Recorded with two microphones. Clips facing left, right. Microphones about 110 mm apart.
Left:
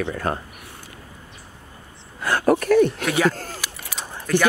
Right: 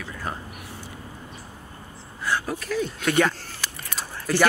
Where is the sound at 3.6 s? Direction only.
5° left (ahead or behind).